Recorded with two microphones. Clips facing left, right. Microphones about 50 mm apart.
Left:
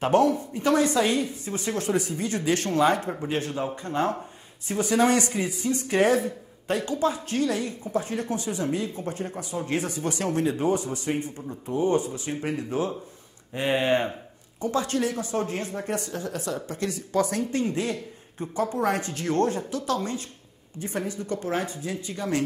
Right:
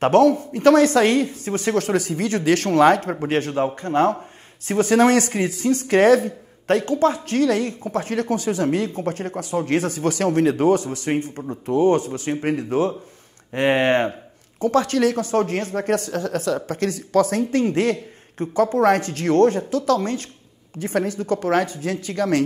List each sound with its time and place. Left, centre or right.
0.0 s speech: right
3.5 s speech: right
4.6 s speech: right
11.1 s speech: right
12.1 s speech: right
13.6 s speech: right